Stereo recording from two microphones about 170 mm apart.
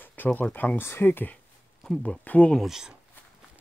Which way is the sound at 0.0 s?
10° left (ahead or behind).